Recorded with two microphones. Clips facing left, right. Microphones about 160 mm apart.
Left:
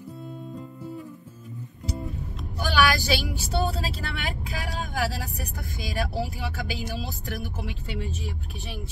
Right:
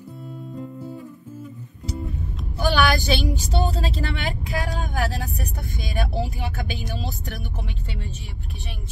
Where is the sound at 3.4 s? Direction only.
5° left (ahead or behind).